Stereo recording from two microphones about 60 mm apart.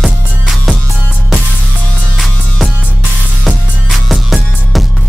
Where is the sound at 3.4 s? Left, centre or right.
Centre.